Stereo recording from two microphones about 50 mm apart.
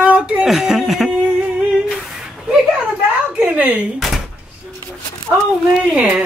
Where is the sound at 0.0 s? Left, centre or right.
Right.